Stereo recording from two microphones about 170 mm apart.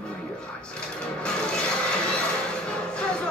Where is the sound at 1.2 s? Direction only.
5° left (ahead or behind).